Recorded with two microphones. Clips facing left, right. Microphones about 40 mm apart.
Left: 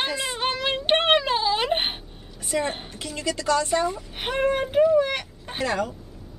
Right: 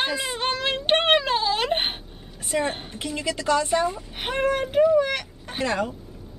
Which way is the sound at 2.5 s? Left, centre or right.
Centre.